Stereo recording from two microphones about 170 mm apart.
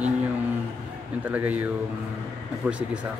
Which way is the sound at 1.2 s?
10° right (ahead or behind).